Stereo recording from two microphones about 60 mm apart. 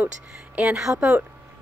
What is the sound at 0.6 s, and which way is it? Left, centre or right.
Speech, centre.